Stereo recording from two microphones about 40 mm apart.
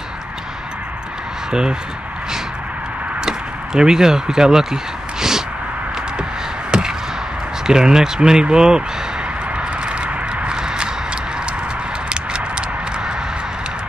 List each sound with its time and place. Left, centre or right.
1.5 s speech: centre
3.3 s speech: centre
6.7 s chop: right
7.6 s speech: centre
9.6 s a sound: right
12.1 s a sound: right